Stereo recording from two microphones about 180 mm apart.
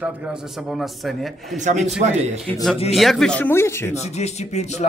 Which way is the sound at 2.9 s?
Centre (ahead or behind).